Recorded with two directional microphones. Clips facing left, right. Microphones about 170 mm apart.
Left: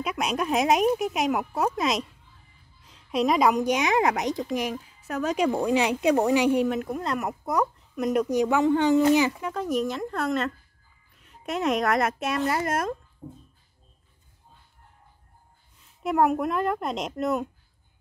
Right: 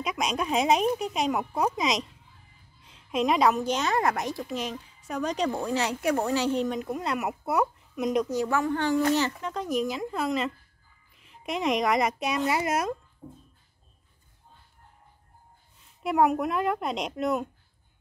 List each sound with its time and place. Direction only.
0.0 s a woman's voice: 5° left (ahead or behind)
2.9 s a sound: 35° left (ahead or behind)
3.3 s a woman's voice: 10° left (ahead or behind)
13.2 s speech: 10° left (ahead or behind)
16.0 s a woman's voice: centre (ahead or behind)